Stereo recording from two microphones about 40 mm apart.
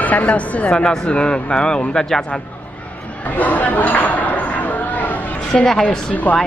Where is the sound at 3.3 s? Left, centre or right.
Left.